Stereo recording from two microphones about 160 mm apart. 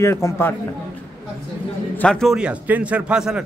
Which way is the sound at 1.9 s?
5° left (ahead or behind).